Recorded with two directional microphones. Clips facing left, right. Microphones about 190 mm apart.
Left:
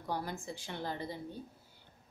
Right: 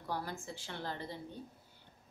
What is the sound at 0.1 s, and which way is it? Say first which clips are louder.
A woman's voice: left 2 dB; 15° left (ahead or behind).